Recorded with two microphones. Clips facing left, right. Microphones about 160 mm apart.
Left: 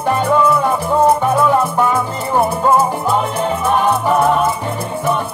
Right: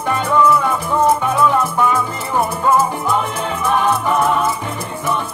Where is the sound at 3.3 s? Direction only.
10° left (ahead or behind).